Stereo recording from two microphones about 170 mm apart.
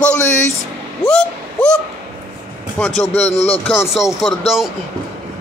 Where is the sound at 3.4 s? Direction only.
35° left (ahead or behind).